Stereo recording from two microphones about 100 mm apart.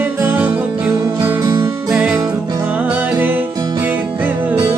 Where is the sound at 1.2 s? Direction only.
30° right (ahead or behind).